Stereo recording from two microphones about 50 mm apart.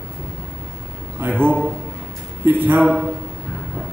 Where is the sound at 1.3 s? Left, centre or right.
Right.